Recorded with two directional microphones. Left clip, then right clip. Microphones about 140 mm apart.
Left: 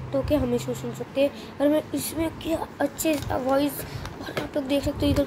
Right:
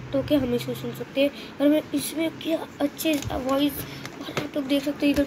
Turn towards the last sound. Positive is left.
turn(degrees=10)  # may be behind; listen again after turning